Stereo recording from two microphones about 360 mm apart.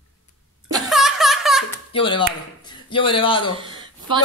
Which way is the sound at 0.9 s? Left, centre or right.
Centre.